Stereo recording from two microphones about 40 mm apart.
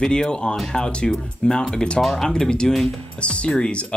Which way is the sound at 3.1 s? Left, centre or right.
Left.